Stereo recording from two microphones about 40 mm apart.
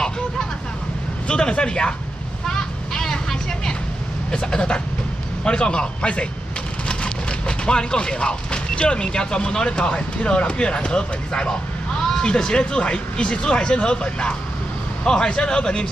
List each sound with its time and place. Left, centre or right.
1.2 s speech: left
2.4 s vehicle: centre
4.3 s speech: left